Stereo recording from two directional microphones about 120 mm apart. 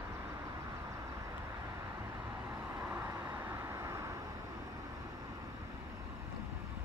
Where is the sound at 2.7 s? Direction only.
20° right (ahead or behind).